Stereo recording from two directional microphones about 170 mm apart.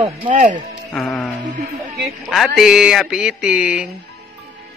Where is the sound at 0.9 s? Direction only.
5° left (ahead or behind).